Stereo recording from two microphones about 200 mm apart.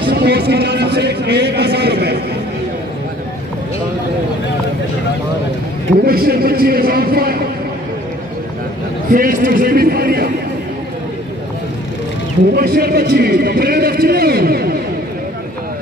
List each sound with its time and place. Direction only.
0.0 s speech: 55° right (ahead or behind)
6.0 s speech: 50° right (ahead or behind)
9.1 s speech: 45° right (ahead or behind)
12.5 s speech: 50° right (ahead or behind)